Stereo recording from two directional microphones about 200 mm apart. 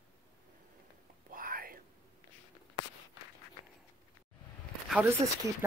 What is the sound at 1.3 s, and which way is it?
Whispering, 45° right (ahead or behind).